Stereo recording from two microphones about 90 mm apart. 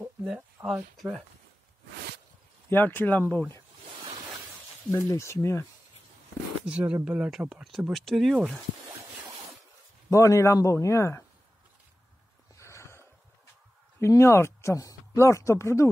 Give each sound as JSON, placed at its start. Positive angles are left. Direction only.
{"t": 0.7, "sound": "speech", "side_deg": -10}
{"t": 2.7, "sound": "speech", "side_deg": 20}
{"t": 4.9, "sound": "a man's voice", "side_deg": 30}
{"t": 6.6, "sound": "speech", "side_deg": -15}
{"t": 10.0, "sound": "a man's voice", "side_deg": 35}
{"t": 12.5, "sound": "snort", "side_deg": 30}
{"t": 13.9, "sound": "speech", "side_deg": 30}